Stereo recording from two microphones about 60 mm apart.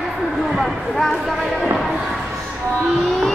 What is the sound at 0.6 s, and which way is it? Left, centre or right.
Speech, centre.